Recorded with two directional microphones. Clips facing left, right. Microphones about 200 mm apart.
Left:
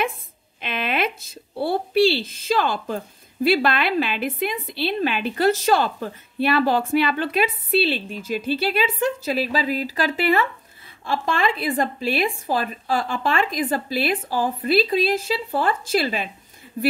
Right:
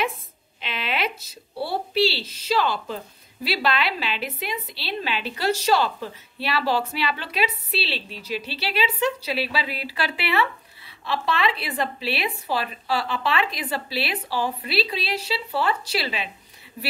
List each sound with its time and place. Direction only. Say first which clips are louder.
0.6 s a woman's voice: left 4 dB; 50° left (ahead or behind)